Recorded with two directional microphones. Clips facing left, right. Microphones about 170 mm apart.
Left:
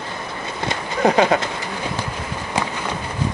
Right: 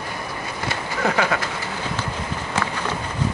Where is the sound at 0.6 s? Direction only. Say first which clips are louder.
Left 5 dB; 20° left (ahead or behind).